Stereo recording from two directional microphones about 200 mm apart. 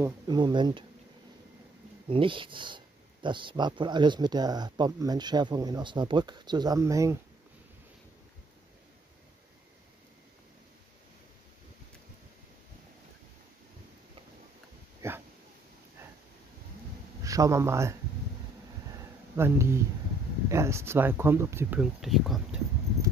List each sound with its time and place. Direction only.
0.0 s speech: 20° right (ahead or behind)
2.0 s speech: 25° right (ahead or behind)
15.0 s a sound: 10° right (ahead or behind)
17.2 s a man's voice: 15° right (ahead or behind)
19.3 s speech: 15° right (ahead or behind)